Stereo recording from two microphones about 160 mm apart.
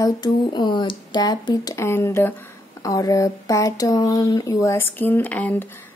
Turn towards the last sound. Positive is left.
turn(degrees=15)  # may be behind; listen again after turning